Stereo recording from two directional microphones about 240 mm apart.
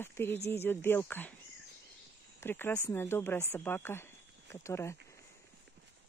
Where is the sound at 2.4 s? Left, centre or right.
Centre.